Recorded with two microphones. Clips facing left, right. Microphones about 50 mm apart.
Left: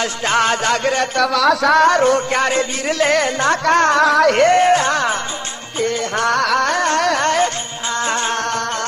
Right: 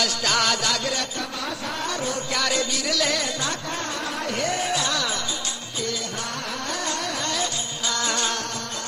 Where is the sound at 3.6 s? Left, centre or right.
Left.